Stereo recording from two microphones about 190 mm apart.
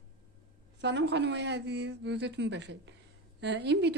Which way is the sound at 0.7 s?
65° right (ahead or behind).